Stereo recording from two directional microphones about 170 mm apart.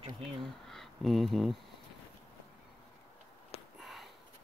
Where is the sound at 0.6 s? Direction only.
Centre (ahead or behind).